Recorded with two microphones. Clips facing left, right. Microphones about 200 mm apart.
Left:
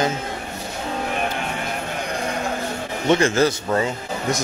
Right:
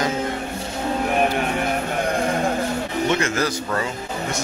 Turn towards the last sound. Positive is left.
turn(degrees=25)  # may be behind; listen again after turning